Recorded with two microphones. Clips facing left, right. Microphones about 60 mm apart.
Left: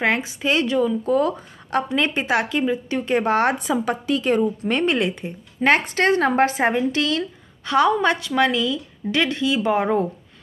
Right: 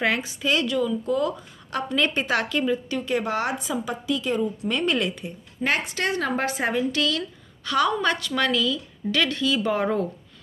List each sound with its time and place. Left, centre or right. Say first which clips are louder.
0.0 s speech: left 3 dB; left
1.9 s speech: right 1 dB; left
3.1 s speech: left 7 dB; left
5.6 s speech: left 7 dB; left